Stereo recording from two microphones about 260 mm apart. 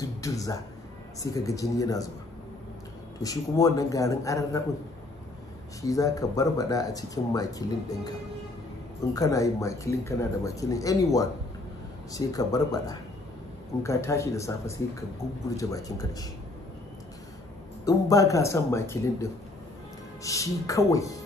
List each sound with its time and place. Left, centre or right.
0.0 s a sound: centre
1.2 s speech: centre
3.2 s speech: centre
5.8 s speech: centre
9.1 s speech: centre
17.8 s speech: centre
20.2 s speech: centre